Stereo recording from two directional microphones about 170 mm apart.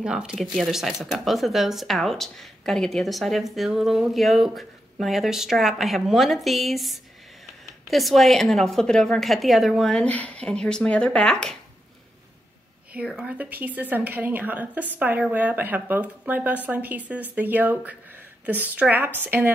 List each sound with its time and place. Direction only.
0.0 s speech: 5° right (ahead or behind)
12.9 s a woman's voice: 5° right (ahead or behind)